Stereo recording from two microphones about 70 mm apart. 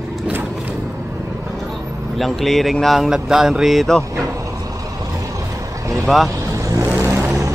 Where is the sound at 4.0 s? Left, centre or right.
Right.